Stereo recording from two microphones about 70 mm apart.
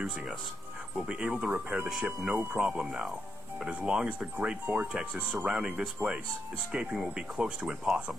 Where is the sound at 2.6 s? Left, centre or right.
Centre.